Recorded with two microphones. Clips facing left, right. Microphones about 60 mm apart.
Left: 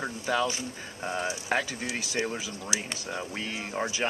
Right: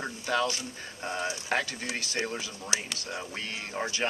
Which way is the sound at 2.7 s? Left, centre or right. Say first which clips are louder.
Right 1 dB; right.